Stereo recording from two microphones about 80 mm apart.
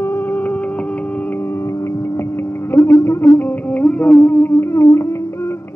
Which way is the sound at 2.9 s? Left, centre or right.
Left.